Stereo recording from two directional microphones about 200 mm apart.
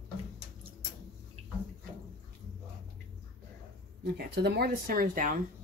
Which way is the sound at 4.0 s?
55° right (ahead or behind).